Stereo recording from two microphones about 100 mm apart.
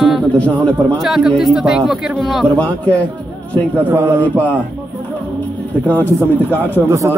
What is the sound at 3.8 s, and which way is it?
Speech, 25° right (ahead or behind).